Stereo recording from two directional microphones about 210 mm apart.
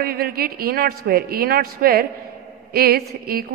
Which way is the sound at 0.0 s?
45° right (ahead or behind).